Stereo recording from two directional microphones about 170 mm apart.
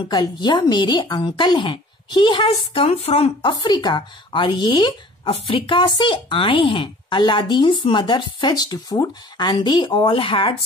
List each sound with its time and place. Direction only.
0.1 s speech: 25° left (ahead or behind)